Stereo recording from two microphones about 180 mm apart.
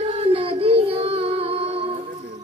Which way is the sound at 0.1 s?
30° right (ahead or behind).